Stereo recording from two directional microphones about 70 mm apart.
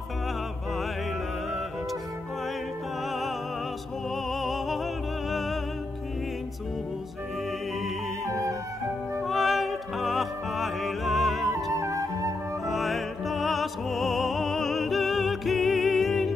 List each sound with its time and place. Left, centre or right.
3.1 s music: centre
8.3 s music: right
9.2 s music: centre
11.7 s flute: right
12.6 s music: centre